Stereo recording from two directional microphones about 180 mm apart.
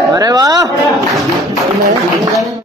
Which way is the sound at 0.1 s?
20° right (ahead or behind).